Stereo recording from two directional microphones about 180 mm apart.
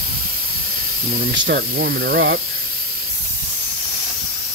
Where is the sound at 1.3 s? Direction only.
75° right (ahead or behind).